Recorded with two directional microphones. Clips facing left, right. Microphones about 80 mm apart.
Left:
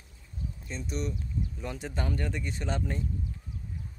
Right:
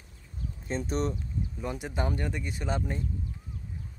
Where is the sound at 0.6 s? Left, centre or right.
Right.